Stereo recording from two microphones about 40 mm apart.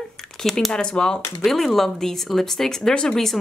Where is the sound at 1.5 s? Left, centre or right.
Centre.